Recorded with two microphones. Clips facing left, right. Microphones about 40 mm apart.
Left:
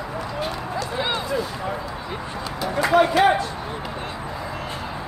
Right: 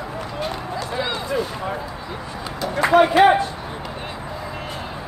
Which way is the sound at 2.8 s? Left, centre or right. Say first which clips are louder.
Right 3 dB; right.